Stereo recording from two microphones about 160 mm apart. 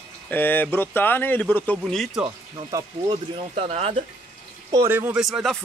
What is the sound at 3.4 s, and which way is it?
Speech, 40° right (ahead or behind).